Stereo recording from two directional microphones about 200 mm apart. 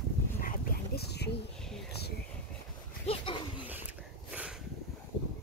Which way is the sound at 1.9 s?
55° left (ahead or behind).